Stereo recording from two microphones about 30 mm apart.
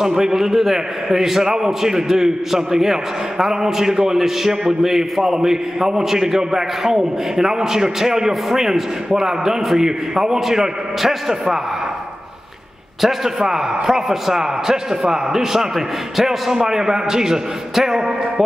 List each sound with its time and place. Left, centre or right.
0.0 s a man's voice: centre
8.3 s a man's voice: centre
13.4 s a man's voice: centre